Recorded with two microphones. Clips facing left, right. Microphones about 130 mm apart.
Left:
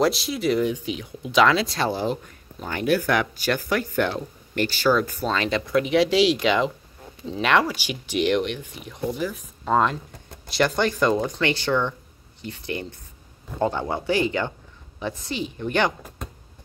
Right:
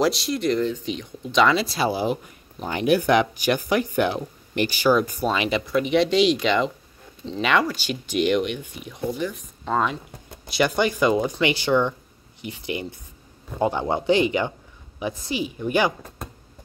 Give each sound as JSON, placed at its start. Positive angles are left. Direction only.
{"t": 0.0, "sound": "speech", "side_deg": 0}
{"t": 5.7, "sound": "speech", "side_deg": 0}